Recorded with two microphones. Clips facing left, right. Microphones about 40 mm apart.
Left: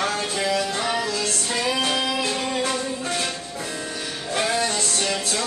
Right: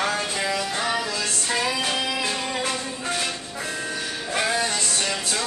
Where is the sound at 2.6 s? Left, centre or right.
Right.